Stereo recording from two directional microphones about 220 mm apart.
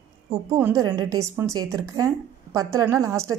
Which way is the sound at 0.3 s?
10° right (ahead or behind).